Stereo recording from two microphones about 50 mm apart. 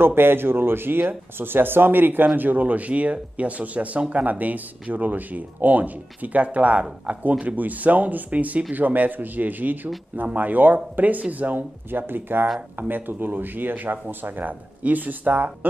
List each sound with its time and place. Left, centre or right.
0.0 s speech: right